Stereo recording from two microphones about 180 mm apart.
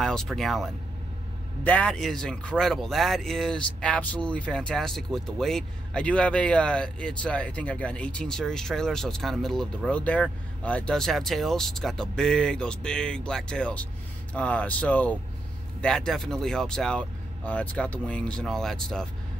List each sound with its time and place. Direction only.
0.0 s speech: 5° left (ahead or behind)